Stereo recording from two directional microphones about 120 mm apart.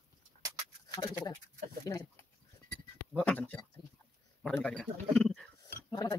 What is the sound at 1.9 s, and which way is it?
Speech, 30° left (ahead or behind).